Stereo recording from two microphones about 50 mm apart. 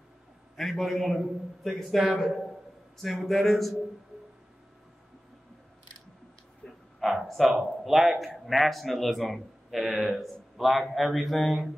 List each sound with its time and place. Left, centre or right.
0.6 s a man's voice: centre
6.6 s dog: left
7.1 s a man's voice: centre